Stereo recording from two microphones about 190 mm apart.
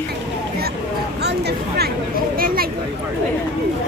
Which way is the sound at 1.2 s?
60° right (ahead or behind).